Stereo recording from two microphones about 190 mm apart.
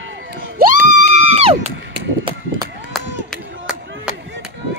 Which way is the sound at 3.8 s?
85° right.